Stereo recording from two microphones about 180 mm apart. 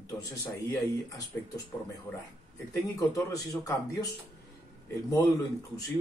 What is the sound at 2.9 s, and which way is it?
Speech, 20° left (ahead or behind).